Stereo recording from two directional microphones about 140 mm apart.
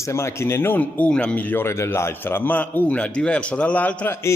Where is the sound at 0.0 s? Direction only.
20° left (ahead or behind).